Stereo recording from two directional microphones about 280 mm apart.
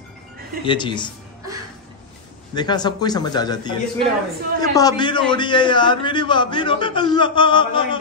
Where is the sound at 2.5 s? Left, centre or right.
Centre.